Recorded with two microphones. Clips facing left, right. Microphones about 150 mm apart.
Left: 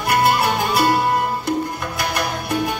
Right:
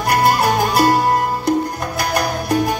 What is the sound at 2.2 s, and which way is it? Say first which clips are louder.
Music: right 5 dB; 40° right (ahead or behind).